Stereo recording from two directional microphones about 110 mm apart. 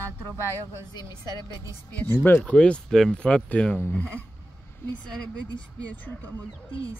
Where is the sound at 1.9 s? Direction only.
15° left (ahead or behind).